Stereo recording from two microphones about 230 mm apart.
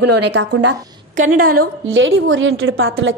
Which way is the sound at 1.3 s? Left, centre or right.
Right.